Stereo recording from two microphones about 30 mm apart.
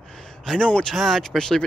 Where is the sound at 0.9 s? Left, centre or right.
Centre.